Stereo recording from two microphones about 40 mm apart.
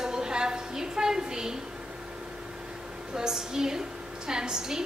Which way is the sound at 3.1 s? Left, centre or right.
Centre.